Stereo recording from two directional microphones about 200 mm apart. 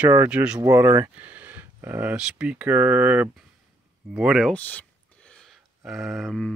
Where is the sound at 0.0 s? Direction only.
10° right (ahead or behind).